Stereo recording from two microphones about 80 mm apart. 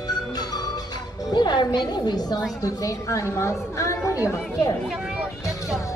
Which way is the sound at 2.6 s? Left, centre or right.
Left.